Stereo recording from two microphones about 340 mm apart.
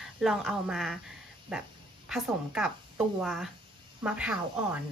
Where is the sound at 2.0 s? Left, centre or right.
Centre.